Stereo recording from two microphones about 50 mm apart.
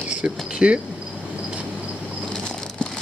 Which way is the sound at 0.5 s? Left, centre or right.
Centre.